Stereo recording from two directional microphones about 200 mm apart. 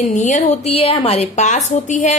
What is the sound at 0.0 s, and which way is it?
A woman's voice, 40° left (ahead or behind).